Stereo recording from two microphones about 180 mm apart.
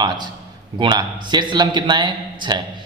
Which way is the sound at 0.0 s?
20° right (ahead or behind).